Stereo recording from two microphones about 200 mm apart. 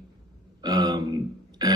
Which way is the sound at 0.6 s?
20° right (ahead or behind).